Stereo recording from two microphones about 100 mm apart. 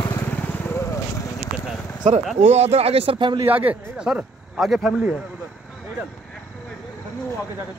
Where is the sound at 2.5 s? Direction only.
90° right; by 3.3 s 60° right (ahead or behind).